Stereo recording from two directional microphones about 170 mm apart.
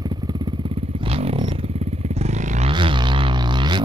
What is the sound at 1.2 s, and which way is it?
Vehicle, 35° right (ahead or behind).